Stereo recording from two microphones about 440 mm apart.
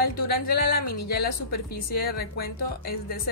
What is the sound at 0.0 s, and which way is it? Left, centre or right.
A woman's voice, left.